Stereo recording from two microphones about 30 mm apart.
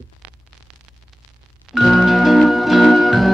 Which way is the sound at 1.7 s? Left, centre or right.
Centre.